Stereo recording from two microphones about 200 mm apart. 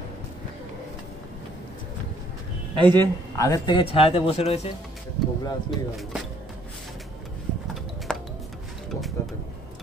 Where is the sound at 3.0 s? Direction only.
15° left (ahead or behind).